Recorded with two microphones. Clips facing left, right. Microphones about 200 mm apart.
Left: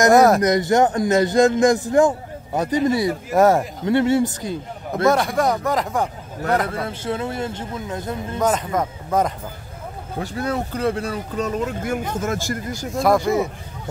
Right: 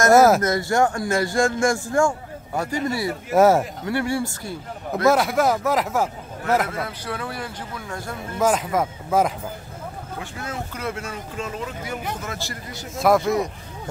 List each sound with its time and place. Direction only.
0.1 s speech: centre (ahead or behind)
0.4 s a man's voice: 20° left (ahead or behind)
3.3 s speech: centre (ahead or behind)
3.8 s a man's voice: 20° left (ahead or behind)
5.0 s speech: centre (ahead or behind)
6.7 s a man's voice: 25° left (ahead or behind)
8.4 s speech: 5° right (ahead or behind)
10.1 s speech: 35° left (ahead or behind)
12.9 s speech: centre (ahead or behind)